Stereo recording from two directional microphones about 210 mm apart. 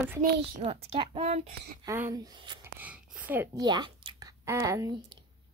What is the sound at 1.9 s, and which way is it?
Speech, 15° right (ahead or behind).